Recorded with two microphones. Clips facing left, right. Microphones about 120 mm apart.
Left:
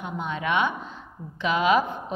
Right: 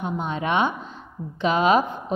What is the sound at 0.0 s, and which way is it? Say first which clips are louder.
A woman's voice: right 3 dB; 30° right (ahead or behind).